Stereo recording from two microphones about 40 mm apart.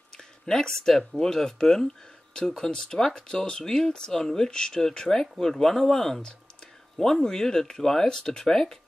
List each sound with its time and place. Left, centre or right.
0.2 s speech: centre
4.5 s speech: centre